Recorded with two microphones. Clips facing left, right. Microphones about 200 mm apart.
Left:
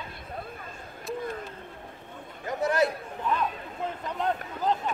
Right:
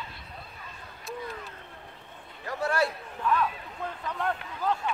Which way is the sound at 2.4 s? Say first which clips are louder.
Left 3 dB; 20° left (ahead or behind).